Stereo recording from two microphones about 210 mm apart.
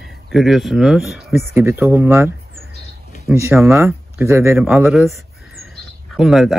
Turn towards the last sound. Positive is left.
turn(degrees=0)  # may be behind; listen again after turning